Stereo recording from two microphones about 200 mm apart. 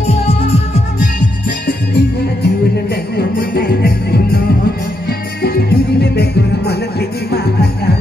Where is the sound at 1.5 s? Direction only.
50° left (ahead or behind).